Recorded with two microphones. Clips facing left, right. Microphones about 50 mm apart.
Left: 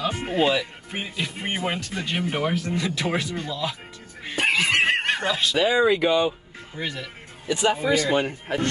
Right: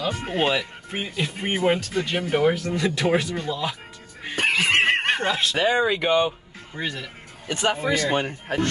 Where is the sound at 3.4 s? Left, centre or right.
Centre.